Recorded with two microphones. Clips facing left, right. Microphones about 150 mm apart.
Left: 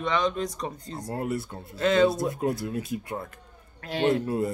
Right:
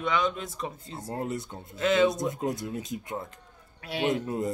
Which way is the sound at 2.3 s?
20° right (ahead or behind).